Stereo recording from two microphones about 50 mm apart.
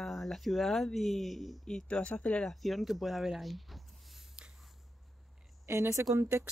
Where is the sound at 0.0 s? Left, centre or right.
Centre.